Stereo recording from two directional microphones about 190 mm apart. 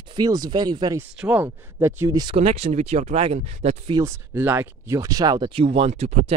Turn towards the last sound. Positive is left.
turn(degrees=-35)  # may be behind; listen again after turning